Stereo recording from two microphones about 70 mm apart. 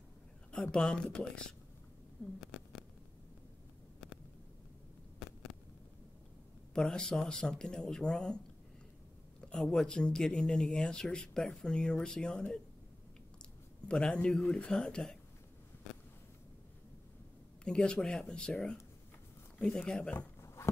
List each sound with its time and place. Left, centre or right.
0.5 s speech: centre
2.5 s a sound: centre
5.2 s hum: centre
6.7 s speech: centre
9.4 s speech: centre
13.8 s speech: centre
17.6 s speech: centre
20.1 s a sound: left